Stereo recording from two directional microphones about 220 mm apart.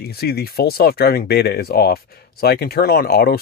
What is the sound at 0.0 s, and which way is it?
Speech, 45° left (ahead or behind).